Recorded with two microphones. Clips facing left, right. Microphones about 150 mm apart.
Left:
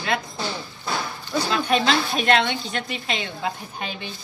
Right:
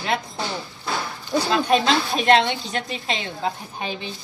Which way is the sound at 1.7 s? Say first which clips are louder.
Right 1 dB; 35° right (ahead or behind).